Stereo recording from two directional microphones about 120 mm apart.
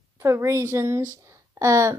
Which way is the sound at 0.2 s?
25° right (ahead or behind).